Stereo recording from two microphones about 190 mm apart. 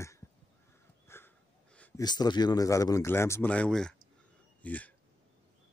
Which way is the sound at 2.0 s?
20° left (ahead or behind).